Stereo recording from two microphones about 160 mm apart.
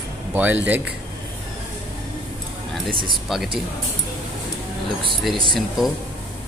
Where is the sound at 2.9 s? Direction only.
30° right (ahead or behind).